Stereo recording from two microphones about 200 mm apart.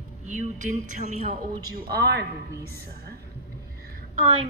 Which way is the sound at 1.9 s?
50° right (ahead or behind).